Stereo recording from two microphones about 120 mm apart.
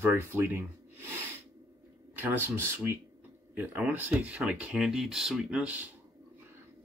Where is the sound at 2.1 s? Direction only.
15° right (ahead or behind).